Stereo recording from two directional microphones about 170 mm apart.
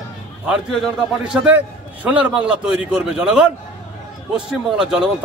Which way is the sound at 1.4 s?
10° right (ahead or behind).